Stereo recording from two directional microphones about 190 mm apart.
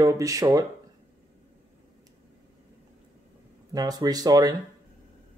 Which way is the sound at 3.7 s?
20° right (ahead or behind).